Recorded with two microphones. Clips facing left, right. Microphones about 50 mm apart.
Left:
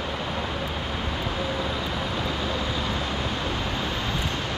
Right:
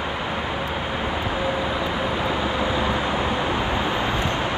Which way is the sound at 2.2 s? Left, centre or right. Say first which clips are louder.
Right 5 dB; right.